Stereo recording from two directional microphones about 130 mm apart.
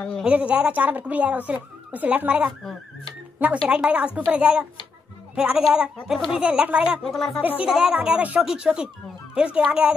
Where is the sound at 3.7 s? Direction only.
10° right (ahead or behind).